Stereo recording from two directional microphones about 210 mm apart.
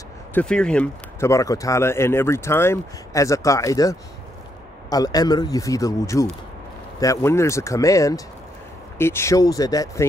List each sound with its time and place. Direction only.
0.3 s speech: 5° left (ahead or behind)